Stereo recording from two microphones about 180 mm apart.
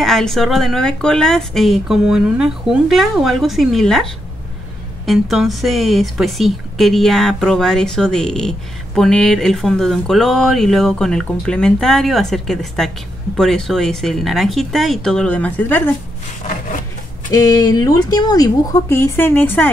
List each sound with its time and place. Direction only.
0.0 s a woman's voice: centre (ahead or behind)
17.3 s speech: 20° left (ahead or behind)